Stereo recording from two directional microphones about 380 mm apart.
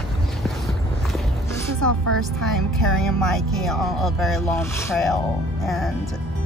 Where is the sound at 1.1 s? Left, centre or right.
Centre.